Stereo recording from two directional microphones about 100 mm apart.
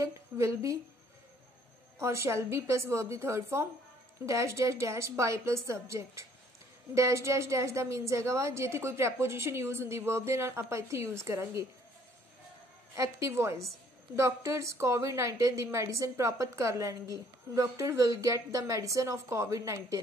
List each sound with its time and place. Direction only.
0.0 s a woman's voice: 30° right (ahead or behind)
2.0 s a woman's voice: 30° right (ahead or behind)
12.9 s a woman's voice: 30° right (ahead or behind)